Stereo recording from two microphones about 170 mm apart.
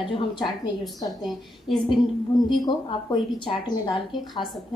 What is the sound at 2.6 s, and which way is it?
A woman's voice, 25° left (ahead or behind).